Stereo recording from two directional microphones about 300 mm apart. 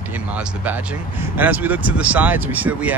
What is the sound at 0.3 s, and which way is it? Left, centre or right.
Speech, centre.